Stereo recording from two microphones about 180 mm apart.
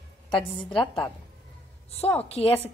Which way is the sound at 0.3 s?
25° left (ahead or behind).